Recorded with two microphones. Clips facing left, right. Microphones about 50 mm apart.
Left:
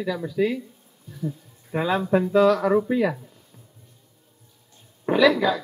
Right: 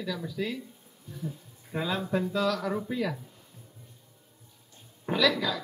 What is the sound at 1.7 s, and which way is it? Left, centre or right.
Speech, left.